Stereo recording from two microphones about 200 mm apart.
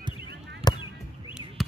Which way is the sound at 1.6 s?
Centre (ahead or behind).